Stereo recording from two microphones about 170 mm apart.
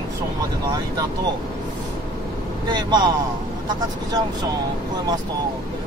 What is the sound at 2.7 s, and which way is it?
Speech, 25° right (ahead or behind).